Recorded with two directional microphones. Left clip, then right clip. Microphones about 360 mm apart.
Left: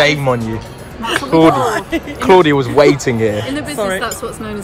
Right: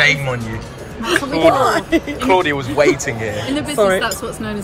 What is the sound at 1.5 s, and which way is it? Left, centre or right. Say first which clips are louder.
Speech: right 1 dB; centre.